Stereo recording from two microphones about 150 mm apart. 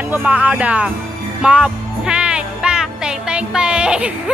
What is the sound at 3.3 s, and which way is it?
Speech, 5° right (ahead or behind).